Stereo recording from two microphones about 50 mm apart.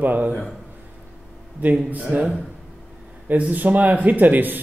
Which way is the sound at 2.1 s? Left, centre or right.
Right.